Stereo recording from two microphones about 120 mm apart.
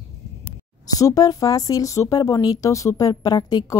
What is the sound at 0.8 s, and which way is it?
Speech, 30° left (ahead or behind).